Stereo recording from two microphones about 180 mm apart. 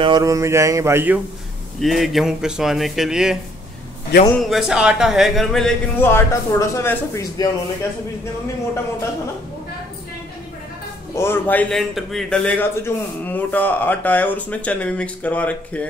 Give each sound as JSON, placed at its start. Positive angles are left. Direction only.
{"t": 0.0, "sound": "a sound", "side_deg": -20}
{"t": 1.8, "sound": "speech", "side_deg": 0}
{"t": 4.1, "sound": "a man's voice", "side_deg": 65}
{"t": 4.5, "sound": "speech", "side_deg": -5}
{"t": 11.1, "sound": "a man's voice", "side_deg": 10}